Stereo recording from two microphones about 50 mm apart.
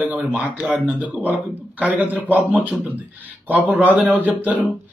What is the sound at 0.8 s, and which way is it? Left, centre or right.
Speech, right.